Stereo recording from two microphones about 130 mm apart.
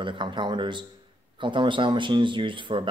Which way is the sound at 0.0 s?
40° right (ahead or behind).